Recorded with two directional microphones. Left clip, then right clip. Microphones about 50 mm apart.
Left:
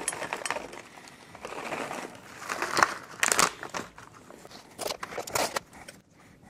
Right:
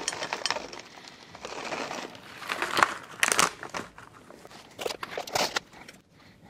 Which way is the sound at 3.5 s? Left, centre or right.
Centre.